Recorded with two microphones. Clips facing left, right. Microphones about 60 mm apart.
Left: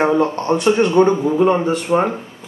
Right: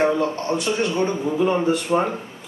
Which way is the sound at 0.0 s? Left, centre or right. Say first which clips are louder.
Left 4 dB; left.